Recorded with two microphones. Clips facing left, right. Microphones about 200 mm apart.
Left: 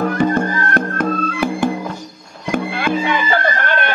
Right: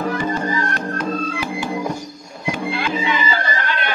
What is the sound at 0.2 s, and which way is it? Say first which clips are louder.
Music: left 5 dB; 55° left (ahead or behind).